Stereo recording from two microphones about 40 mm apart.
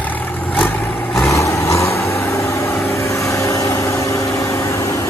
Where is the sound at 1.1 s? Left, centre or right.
Centre.